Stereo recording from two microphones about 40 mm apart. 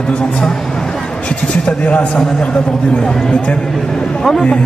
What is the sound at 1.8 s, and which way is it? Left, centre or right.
Speech, left.